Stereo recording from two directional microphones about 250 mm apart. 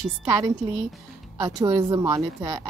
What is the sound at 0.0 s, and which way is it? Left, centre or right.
A woman's voice, centre.